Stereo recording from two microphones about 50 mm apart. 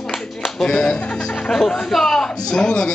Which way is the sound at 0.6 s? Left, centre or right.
Centre.